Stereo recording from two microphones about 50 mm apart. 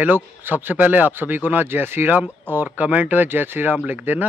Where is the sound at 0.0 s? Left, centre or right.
Right.